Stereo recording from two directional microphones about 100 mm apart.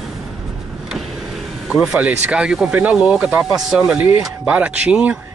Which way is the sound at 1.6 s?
5° right (ahead or behind).